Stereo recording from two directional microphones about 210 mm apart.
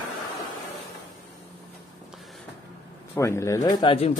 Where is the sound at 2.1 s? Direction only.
Centre (ahead or behind).